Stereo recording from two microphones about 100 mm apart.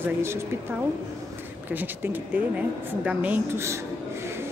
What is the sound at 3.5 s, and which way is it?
Speech, 30° right (ahead or behind).